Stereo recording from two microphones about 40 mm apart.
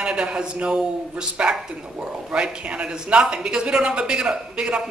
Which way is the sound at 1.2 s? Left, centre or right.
Centre.